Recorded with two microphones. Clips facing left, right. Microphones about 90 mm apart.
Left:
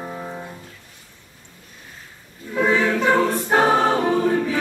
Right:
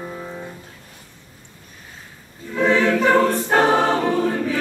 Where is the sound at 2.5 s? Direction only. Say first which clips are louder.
Right 2 dB; 10° left (ahead or behind).